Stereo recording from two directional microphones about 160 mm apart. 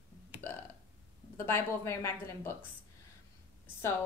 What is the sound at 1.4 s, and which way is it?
A woman's voice, 15° left (ahead or behind).